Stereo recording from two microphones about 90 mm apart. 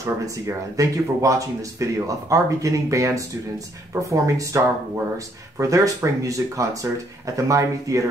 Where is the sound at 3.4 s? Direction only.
25° right (ahead or behind).